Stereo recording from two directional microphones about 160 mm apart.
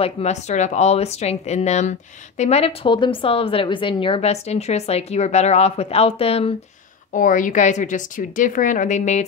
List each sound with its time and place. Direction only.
0.0 s speech: 45° left (ahead or behind)
7.2 s a woman's voice: 55° left (ahead or behind)